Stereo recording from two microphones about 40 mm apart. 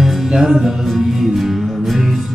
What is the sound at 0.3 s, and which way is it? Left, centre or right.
Music, centre.